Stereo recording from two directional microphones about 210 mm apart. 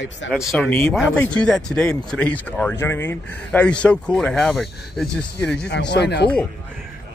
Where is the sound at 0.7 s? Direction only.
10° left (ahead or behind).